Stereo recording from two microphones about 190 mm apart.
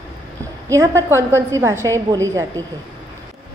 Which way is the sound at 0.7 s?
15° right (ahead or behind).